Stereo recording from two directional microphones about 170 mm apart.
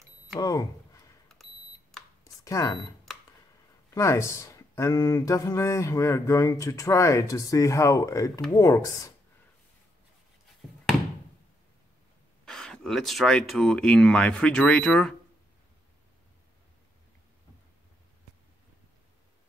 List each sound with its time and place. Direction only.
0.4 s speech: 20° left (ahead or behind)
1.3 s alarm clock: centre (ahead or behind)
2.2 s a sound: 20° left (ahead or behind)
3.9 s speech: 15° left (ahead or behind)
12.4 s speech: 5° left (ahead or behind)